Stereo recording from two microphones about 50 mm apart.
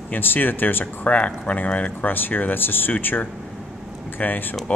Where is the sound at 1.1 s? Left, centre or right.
Left.